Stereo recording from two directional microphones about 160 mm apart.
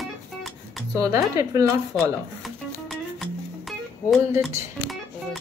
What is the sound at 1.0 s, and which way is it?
Speech, 20° right (ahead or behind).